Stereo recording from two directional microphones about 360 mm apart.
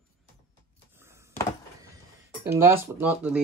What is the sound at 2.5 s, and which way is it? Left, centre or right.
Speech, centre.